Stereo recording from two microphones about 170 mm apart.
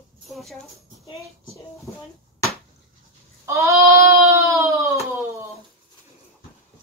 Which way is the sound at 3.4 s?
20° right (ahead or behind).